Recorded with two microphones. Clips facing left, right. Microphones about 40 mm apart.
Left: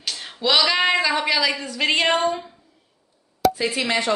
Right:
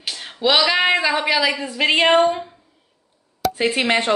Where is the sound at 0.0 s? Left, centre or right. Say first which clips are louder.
Right 4 dB; centre.